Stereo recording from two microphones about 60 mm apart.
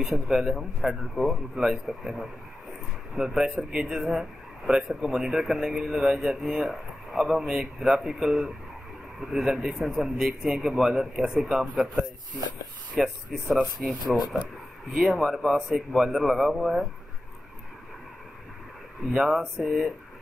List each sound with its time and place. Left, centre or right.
0.0 s speech: centre
12.9 s a man's voice: centre
19.1 s speech: centre